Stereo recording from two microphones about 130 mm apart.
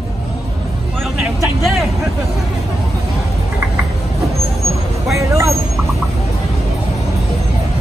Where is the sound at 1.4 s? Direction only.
Centre (ahead or behind).